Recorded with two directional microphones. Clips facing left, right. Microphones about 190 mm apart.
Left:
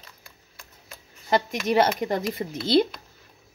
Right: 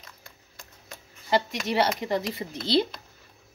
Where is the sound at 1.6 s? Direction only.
45° left (ahead or behind).